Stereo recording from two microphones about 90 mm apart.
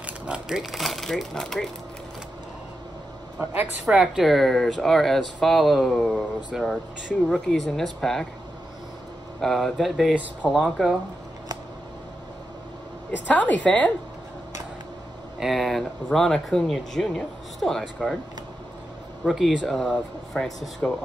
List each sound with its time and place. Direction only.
0.0 s speech: 10° right (ahead or behind)
3.8 s speech: 10° right (ahead or behind)
9.4 s speech: centre (ahead or behind)
13.1 s a woman's voice: 15° left (ahead or behind)
15.3 s speech: 5° right (ahead or behind)
19.2 s speech: centre (ahead or behind)